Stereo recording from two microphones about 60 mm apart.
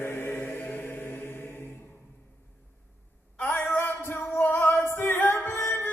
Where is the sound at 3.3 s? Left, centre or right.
Left.